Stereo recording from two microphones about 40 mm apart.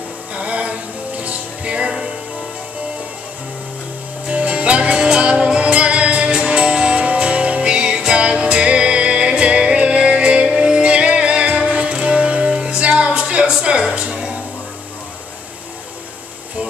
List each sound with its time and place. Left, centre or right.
0.3 s music: right
4.3 s music: right